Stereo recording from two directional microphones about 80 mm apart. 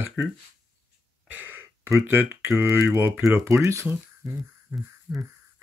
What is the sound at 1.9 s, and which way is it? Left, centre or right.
Speech, right.